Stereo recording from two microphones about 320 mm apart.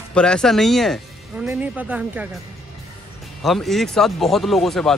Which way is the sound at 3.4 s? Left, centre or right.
Centre.